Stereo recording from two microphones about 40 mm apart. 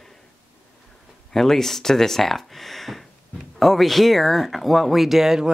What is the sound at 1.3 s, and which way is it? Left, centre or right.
Speech, centre.